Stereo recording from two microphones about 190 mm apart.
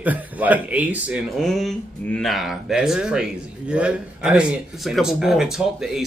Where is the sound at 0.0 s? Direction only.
10° right (ahead or behind).